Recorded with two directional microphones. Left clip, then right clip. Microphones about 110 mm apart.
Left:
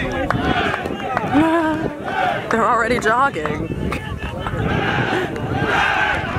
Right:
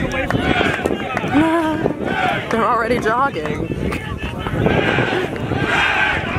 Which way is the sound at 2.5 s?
25° left (ahead or behind).